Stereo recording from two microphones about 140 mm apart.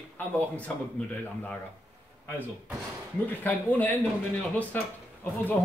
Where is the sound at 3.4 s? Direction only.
10° left (ahead or behind).